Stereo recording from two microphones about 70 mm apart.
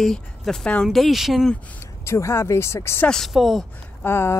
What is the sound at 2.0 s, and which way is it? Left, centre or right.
Speech, left.